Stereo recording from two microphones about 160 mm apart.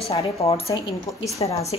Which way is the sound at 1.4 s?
30° left (ahead or behind).